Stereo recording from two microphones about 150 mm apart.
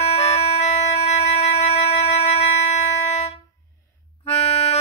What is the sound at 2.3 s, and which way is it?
Music, 45° left (ahead or behind).